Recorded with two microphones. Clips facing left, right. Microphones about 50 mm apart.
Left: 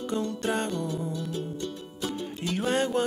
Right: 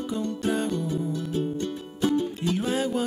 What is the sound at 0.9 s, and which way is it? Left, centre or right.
Music, right.